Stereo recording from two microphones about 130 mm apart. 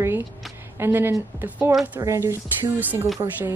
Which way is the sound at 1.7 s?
5° right (ahead or behind).